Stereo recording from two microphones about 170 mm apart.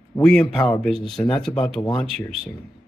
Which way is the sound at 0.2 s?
5° left (ahead or behind).